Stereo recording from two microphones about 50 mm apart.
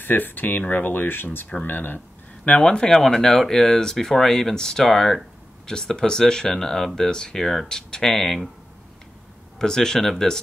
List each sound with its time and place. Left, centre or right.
0.0 s speech: left
2.4 s speech: left; by 8.5 s centre
9.6 s speech: centre